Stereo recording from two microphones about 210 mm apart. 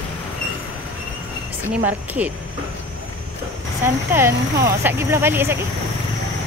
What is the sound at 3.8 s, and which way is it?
Speech, 10° right (ahead or behind).